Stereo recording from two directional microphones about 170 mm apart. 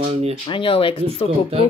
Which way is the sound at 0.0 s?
35° right (ahead or behind).